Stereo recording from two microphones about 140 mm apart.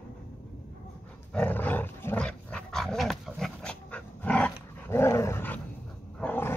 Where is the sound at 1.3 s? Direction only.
10° left (ahead or behind).